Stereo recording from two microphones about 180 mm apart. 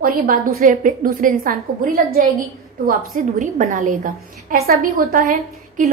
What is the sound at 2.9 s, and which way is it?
A woman's voice, 45° right (ahead or behind).